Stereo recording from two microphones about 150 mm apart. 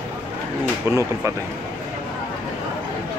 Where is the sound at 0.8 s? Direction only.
20° right (ahead or behind).